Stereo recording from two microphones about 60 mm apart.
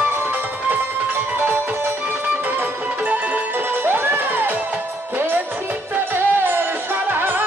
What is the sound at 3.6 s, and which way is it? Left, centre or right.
Music, right.